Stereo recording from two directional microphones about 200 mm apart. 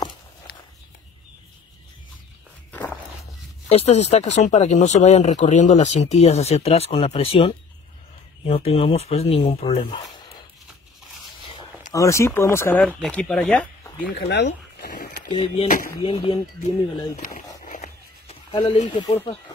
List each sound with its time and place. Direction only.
2.7 s walk: 10° left (ahead or behind)
3.6 s speech: 30° left (ahead or behind)
8.5 s speech: 30° left (ahead or behind)
11.9 s speech: 15° left (ahead or behind)
13.9 s speech: 50° left (ahead or behind)
15.2 s speech: 25° left (ahead or behind)
17.6 s a sound: 35° left (ahead or behind)